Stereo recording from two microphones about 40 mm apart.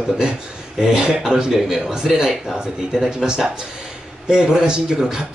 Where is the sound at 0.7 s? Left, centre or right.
Centre.